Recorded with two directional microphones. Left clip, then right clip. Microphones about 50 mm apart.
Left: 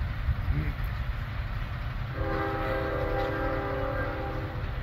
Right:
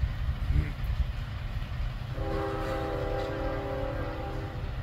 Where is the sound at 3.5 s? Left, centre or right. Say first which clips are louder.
Left 3 dB; centre.